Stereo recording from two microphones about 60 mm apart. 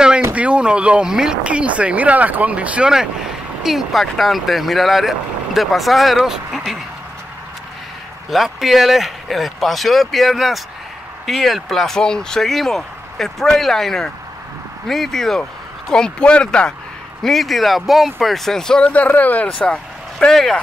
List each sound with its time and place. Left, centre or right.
0.3 s speech: right
3.6 s speech: centre
8.3 s speech: centre
17.2 s speech: centre; by 19.4 s left
19.4 s speech: centre